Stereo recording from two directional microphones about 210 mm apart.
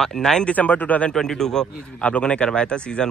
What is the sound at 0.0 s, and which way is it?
A man's voice, 5° left (ahead or behind).